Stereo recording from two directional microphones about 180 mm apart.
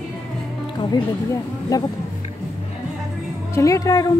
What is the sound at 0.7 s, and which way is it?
Music, 25° left (ahead or behind).